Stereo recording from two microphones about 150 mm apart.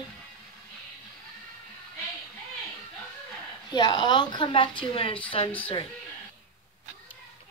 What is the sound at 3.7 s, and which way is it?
A woman's voice, 30° left (ahead or behind).